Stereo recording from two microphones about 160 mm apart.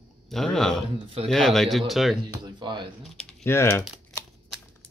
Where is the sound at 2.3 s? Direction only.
30° right (ahead or behind).